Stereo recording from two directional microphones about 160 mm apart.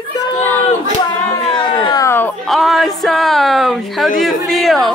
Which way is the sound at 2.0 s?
15° left (ahead or behind).